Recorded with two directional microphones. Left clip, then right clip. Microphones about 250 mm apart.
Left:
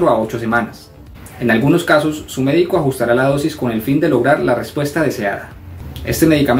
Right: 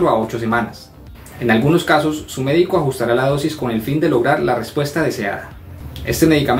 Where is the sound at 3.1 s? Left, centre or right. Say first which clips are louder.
Left 2 dB; centre.